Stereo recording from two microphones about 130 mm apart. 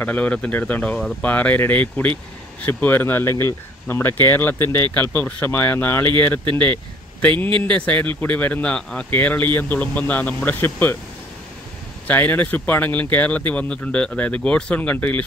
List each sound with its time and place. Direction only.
0.0 s speech: 10° left (ahead or behind)
7.2 s a man's voice: 10° left (ahead or behind)
12.1 s speech: 15° left (ahead or behind)